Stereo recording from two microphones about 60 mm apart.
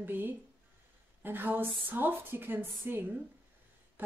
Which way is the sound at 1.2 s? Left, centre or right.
Right.